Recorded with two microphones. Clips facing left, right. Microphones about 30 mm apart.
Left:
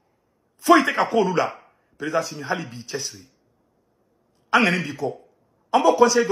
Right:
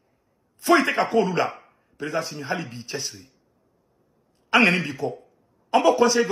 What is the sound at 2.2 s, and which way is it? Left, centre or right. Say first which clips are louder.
Speech: left 3 dB; right.